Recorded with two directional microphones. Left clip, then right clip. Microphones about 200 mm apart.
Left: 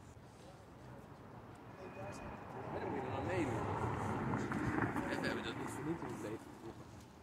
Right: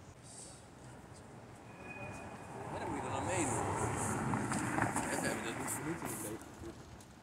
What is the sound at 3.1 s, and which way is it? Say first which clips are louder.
Vehicle: right 4 dB; 60° right (ahead or behind).